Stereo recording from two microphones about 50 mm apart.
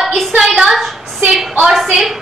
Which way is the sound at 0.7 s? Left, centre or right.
Centre.